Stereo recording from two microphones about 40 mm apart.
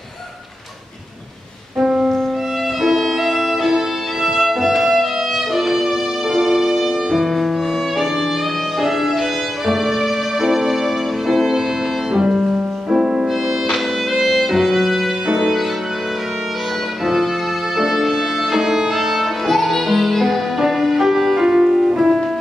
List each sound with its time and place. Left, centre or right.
1.8 s music: centre
2.8 s violin: centre
5.6 s music: centre
8.8 s violin: centre
9.7 s music: centre
12.1 s music: centre
12.9 s music: centre
17.0 s violin: centre
19.4 s music: centre